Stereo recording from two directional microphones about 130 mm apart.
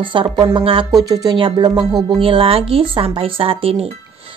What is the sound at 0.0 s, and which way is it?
Speech, 40° right (ahead or behind).